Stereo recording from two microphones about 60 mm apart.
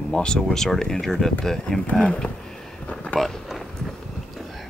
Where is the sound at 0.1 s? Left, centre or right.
Centre.